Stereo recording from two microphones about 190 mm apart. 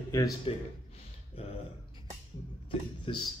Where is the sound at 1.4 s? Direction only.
30° left (ahead or behind).